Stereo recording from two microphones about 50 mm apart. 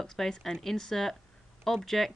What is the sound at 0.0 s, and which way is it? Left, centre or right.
Speech, centre.